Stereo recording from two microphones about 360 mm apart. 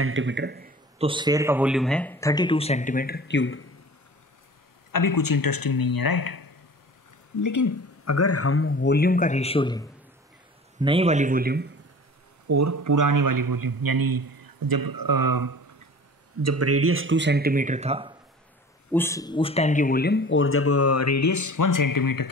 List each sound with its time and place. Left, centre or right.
0.0 s a man's voice: right; by 3.6 s left
4.9 s speech: left
7.4 s speech: left; by 9.8 s centre
10.8 s speech: centre
12.4 s a man's voice: right
16.4 s speech: right; by 18.1 s centre
18.9 s speech: centre; by 22.3 s left